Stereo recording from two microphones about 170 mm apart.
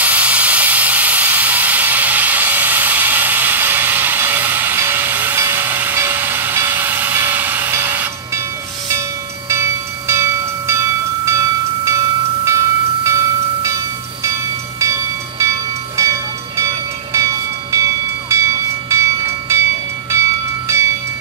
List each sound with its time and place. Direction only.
0.0 s steam: 10° right (ahead or behind)
9.5 s music: 15° right (ahead or behind)
12.4 s train: 15° right (ahead or behind)